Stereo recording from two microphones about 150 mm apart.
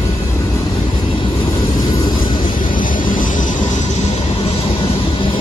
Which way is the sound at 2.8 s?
65° left (ahead or behind).